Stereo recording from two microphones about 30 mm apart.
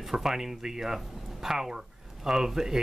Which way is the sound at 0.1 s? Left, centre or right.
Centre.